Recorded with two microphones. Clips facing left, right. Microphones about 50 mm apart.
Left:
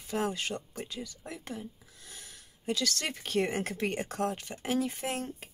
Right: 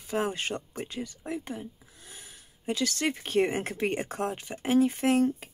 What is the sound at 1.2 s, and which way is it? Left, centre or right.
Speech, right.